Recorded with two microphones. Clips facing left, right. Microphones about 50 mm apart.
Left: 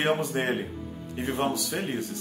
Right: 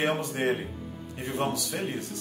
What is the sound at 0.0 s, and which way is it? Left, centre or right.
Speech, left.